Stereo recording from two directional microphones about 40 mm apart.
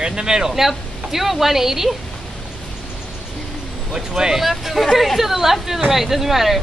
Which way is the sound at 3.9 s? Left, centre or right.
Centre.